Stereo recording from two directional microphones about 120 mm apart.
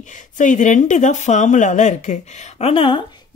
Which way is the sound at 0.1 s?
90° left.